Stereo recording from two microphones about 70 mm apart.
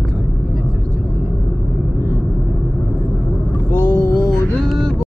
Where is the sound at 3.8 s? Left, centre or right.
Left.